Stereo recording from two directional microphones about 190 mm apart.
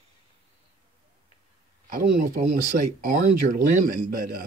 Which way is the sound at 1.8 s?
45° right (ahead or behind).